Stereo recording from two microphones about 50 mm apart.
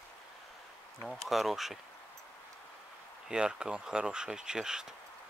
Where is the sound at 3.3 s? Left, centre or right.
Centre.